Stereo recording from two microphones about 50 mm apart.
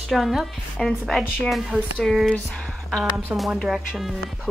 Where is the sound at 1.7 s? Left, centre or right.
Right.